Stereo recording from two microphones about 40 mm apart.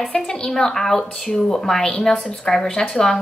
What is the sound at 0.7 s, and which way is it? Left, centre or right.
A woman's voice, centre.